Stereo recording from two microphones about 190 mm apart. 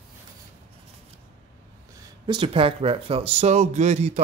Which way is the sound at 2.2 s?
25° right (ahead or behind).